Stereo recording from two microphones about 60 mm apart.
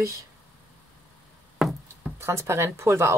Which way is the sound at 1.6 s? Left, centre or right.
Centre.